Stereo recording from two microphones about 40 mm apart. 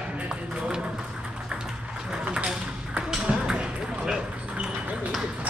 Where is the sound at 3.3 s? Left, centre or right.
Right.